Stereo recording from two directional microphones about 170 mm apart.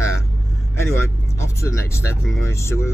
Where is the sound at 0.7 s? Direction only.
15° left (ahead or behind).